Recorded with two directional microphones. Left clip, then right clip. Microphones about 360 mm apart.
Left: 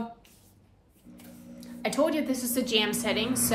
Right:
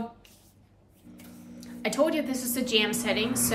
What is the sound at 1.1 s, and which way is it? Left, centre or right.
Speech, centre.